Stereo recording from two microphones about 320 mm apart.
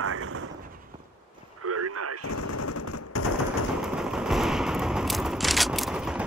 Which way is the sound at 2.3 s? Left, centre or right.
Left.